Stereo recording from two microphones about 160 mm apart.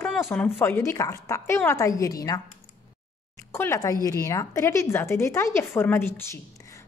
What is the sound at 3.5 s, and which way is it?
A woman's voice, 15° left (ahead or behind).